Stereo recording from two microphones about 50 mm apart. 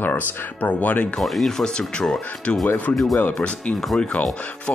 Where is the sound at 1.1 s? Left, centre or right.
Centre.